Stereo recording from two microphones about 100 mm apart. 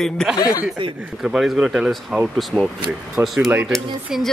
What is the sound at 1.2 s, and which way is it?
A woman's voice, 5° right (ahead or behind).